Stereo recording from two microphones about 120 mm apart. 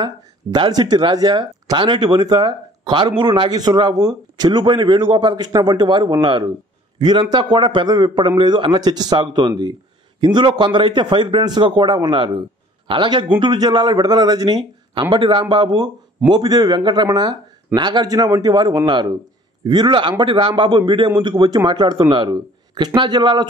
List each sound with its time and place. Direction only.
0.0 s a man's voice: 40° right (ahead or behind)